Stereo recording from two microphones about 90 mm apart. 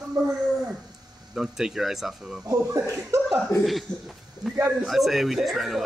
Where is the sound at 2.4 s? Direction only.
35° right (ahead or behind).